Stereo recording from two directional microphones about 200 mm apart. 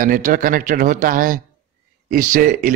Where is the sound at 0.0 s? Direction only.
45° right (ahead or behind).